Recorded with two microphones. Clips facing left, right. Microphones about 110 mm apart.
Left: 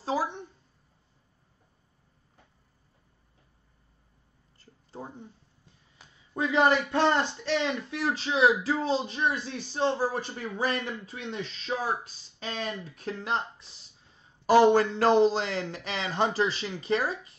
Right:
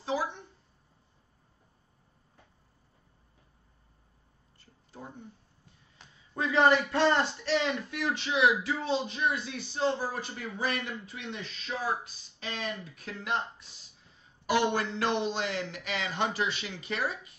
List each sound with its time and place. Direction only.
0.0 s a sound: 35° left (ahead or behind)
5.0 s a man's voice: 40° left (ahead or behind)
6.3 s a man's voice: 25° left (ahead or behind)